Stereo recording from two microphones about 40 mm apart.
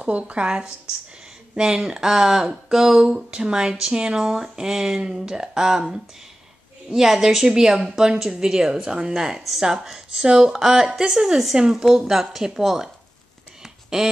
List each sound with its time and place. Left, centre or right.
0.2 s a woman's voice: right
7.0 s speech: centre
13.6 s a sound: centre